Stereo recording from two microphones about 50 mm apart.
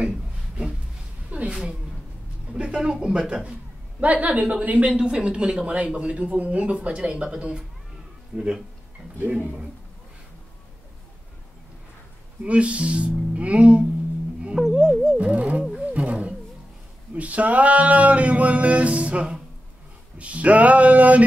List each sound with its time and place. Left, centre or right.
1.3 s a sound: right
2.5 s music: right
8.4 s speech: centre
9.3 s music: right
12.4 s music: right
14.6 s music: centre
15.1 s music: right
15.9 s wild animals: right
17.1 s music: right